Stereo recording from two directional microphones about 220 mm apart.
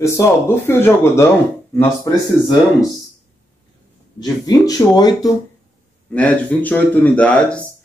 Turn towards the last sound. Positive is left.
turn(degrees=5)  # may be behind; listen again after turning